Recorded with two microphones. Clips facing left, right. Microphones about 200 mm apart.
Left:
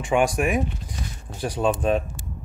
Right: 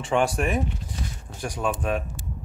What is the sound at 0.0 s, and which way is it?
Speech, 10° left (ahead or behind).